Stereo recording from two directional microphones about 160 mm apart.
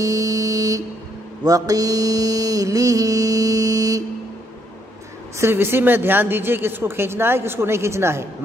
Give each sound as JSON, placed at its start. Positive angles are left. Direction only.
{"t": 0.0, "sound": "buzzer", "side_deg": -20}
{"t": 1.4, "sound": "mantra", "side_deg": -20}
{"t": 5.4, "sound": "a woman's voice", "side_deg": -15}